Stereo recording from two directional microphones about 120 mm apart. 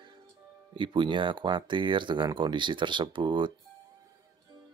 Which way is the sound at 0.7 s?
40° right (ahead or behind).